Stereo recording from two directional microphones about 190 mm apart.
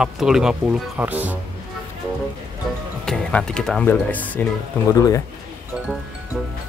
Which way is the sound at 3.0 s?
5° left (ahead or behind).